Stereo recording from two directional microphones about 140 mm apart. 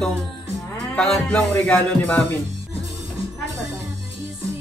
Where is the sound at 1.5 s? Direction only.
10° left (ahead or behind).